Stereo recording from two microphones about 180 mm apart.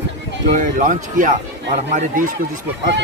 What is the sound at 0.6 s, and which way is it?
Speech, 45° right (ahead or behind).